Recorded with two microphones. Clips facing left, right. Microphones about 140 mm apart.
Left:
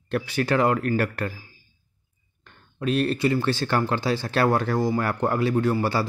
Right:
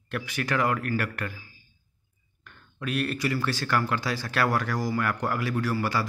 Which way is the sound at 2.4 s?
30° left (ahead or behind).